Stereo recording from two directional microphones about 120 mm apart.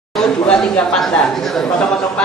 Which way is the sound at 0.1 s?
5° left (ahead or behind).